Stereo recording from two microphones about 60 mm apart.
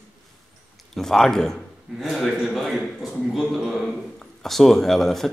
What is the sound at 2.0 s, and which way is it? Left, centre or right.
Speech, centre.